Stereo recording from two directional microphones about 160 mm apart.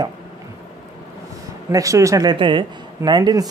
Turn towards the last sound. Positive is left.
turn(degrees=-25)  # may be behind; listen again after turning